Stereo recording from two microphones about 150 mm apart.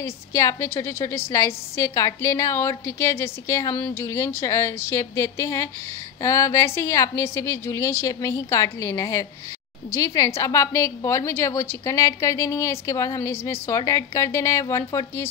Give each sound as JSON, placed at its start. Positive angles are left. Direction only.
{"t": 0.0, "sound": "a woman's voice", "side_deg": 20}